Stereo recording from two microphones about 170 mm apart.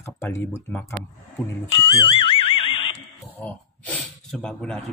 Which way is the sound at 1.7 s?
35° left (ahead or behind).